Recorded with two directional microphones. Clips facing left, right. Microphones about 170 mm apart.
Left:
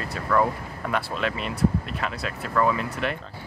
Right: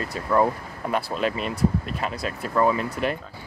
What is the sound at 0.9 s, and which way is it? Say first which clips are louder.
Speech: right 2 dB; 40° right (ahead or behind).